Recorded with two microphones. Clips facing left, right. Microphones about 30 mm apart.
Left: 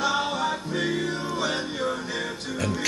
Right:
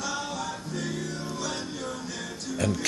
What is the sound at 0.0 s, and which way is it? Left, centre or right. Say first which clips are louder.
Music: left 7 dB; left.